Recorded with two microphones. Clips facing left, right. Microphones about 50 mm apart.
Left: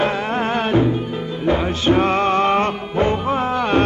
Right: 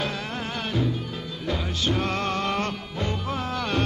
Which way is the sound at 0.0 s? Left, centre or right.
Left.